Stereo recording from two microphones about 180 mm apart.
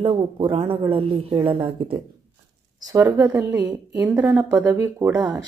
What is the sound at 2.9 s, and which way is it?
Speech, 15° right (ahead or behind).